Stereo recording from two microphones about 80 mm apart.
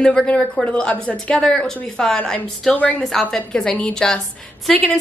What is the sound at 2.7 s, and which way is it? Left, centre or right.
Speech, centre.